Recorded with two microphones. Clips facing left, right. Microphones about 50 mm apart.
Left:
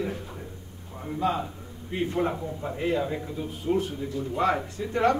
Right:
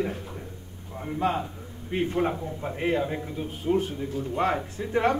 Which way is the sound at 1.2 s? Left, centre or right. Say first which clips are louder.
Even; right.